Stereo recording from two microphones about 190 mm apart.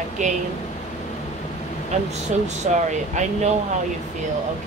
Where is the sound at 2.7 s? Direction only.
40° right (ahead or behind).